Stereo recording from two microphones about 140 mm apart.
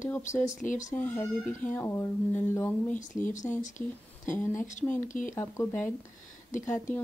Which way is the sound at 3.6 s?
65° left (ahead or behind).